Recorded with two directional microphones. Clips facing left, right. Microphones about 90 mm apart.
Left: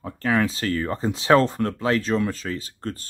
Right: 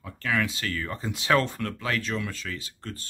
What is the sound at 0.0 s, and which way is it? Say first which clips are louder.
Speech: left 6 dB; 35° left (ahead or behind).